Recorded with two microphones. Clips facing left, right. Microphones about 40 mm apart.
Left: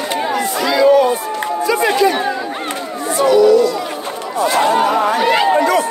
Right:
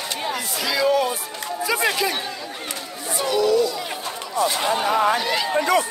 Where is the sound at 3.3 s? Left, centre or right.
Centre.